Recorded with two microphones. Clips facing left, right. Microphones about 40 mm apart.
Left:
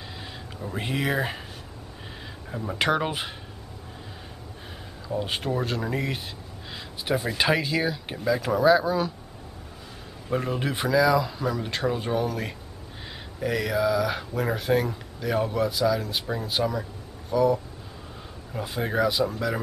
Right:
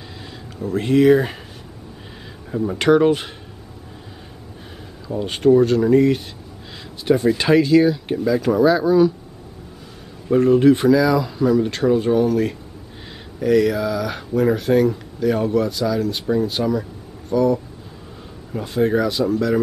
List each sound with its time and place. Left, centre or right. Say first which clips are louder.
0.6 s speech: right 13 dB; centre
2.5 s speech: right 9 dB; centre
5.0 s speech: right 11 dB; centre
10.3 s speech: right 14 dB; centre